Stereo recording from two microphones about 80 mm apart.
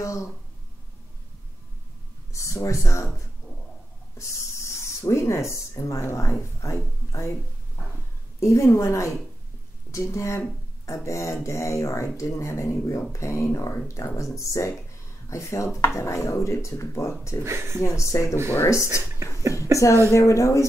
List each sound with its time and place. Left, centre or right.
2.3 s speech: left
4.4 s speech: left
8.4 s speech: left
17.5 s speech: right
17.7 s speech: left
19.4 s speech: right
20.1 s speech: left